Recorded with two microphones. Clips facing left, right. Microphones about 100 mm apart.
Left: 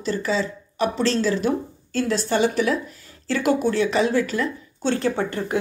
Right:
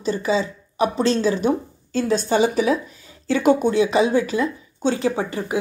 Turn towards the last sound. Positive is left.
turn(degrees=-5)  # may be behind; listen again after turning